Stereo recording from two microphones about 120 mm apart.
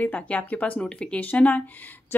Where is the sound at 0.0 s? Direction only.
10° left (ahead or behind).